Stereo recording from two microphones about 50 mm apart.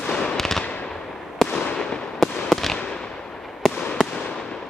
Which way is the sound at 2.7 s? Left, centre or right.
Centre.